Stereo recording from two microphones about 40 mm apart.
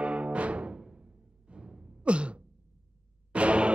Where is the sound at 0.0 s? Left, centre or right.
Right.